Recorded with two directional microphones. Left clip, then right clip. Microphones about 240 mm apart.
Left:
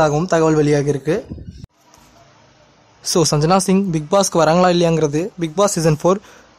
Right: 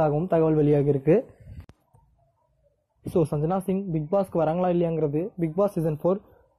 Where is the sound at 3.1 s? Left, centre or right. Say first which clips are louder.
Left 10 dB; centre.